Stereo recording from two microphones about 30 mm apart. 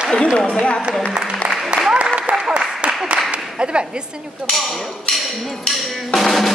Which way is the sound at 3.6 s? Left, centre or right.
Right.